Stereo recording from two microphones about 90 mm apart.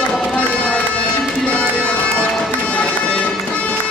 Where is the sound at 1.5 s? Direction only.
10° left (ahead or behind).